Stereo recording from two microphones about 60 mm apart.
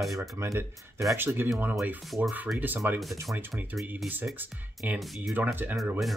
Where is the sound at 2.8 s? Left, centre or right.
Right.